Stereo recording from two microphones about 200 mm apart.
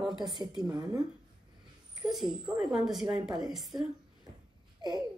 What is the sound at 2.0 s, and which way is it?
Speech, centre (ahead or behind).